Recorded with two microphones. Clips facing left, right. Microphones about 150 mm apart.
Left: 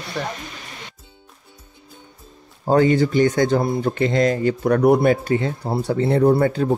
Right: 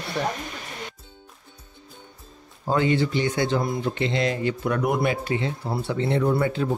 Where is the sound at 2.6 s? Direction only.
40° left (ahead or behind).